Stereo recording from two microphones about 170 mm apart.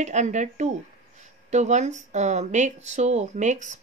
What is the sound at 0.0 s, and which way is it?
A woman's voice, 45° right (ahead or behind).